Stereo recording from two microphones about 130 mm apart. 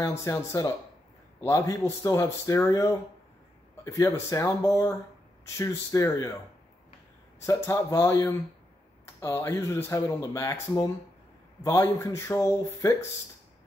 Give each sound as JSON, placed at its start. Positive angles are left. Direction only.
{"t": 0.2, "sound": "speech", "side_deg": 25}
{"t": 7.4, "sound": "speech", "side_deg": 25}